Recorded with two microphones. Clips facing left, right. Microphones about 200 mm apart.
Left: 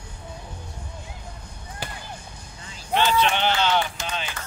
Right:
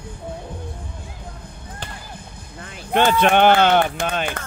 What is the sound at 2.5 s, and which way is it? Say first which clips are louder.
Speech: right 5 dB; 55° right (ahead or behind).